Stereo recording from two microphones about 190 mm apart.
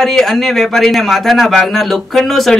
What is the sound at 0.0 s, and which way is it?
A woman's voice, centre (ahead or behind).